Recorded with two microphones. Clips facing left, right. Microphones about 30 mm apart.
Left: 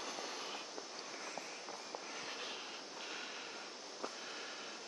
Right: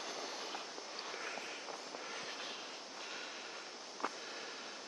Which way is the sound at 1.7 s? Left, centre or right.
Centre.